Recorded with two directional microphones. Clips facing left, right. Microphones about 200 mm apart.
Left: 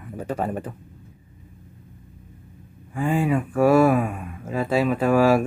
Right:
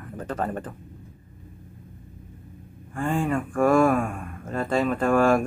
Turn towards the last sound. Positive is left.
turn(degrees=5)  # may be behind; listen again after turning